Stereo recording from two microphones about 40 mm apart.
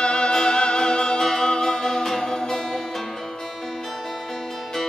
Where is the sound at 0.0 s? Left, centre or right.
Left.